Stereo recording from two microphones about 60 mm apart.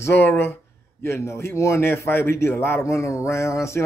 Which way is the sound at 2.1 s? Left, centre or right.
Left.